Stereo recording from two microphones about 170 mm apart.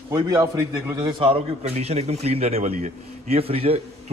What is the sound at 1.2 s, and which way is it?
A man's voice, 35° right (ahead or behind).